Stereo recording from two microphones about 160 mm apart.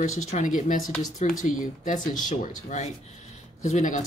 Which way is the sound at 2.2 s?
45° left (ahead or behind).